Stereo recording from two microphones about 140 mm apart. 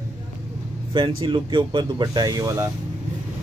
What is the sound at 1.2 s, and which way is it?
Speech, 35° right (ahead or behind).